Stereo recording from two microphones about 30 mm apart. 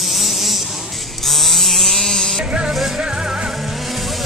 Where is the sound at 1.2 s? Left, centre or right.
Centre.